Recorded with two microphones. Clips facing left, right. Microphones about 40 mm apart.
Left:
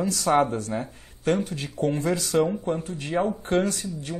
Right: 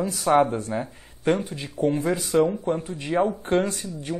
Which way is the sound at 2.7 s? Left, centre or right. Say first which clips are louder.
Right 2 dB; right.